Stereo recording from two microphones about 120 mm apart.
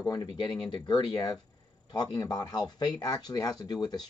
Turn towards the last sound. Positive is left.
turn(degrees=35)  # may be behind; listen again after turning